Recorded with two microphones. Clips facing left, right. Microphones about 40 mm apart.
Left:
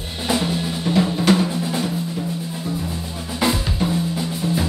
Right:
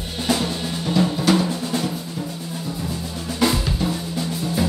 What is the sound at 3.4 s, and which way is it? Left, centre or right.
Drum, centre.